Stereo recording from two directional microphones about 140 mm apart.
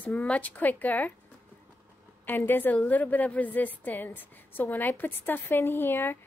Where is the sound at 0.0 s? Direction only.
10° left (ahead or behind).